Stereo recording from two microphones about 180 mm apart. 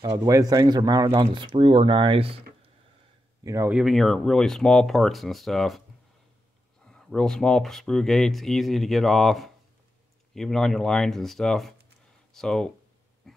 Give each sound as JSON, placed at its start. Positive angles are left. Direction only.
{"t": 0.2, "sound": "speech", "side_deg": -15}
{"t": 3.4, "sound": "speech", "side_deg": -15}
{"t": 3.7, "sound": "speech", "side_deg": 0}
{"t": 6.9, "sound": "speech", "side_deg": 5}